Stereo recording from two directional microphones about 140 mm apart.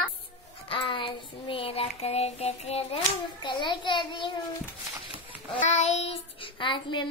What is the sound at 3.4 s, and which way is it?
Speech, 35° left (ahead or behind).